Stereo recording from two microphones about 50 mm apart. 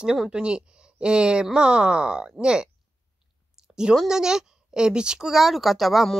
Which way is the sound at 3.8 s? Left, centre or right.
Centre.